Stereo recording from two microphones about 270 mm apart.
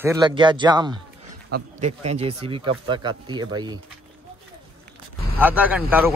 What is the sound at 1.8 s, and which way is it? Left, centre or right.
A man's voice, right.